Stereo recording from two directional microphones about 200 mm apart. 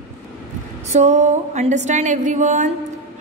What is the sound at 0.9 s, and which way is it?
A woman's voice, 35° right (ahead or behind).